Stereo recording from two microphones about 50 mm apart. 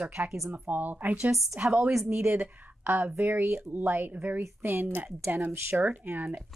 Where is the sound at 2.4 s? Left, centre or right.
Right.